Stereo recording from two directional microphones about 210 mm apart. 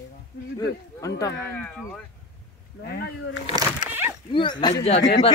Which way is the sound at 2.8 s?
50° left (ahead or behind).